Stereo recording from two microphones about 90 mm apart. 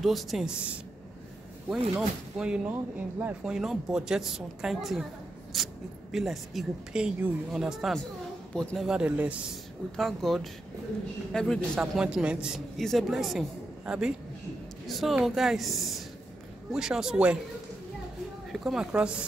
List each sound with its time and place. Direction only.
0.0 s speech: centre (ahead or behind)
2.0 s speech: 10° right (ahead or behind)
2.7 s speech: 20° right (ahead or behind)
3.5 s speech: 5° right (ahead or behind)
9.9 s a man's voice: centre (ahead or behind)
11.9 s speech: 10° right (ahead or behind)
12.7 s a man's voice: centre (ahead or behind)
18.5 s speech: 5° right (ahead or behind)